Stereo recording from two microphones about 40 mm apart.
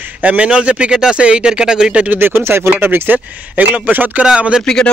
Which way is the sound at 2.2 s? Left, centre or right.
Right.